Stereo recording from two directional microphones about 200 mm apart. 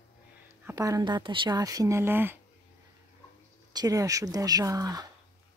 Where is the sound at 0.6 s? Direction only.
15° right (ahead or behind).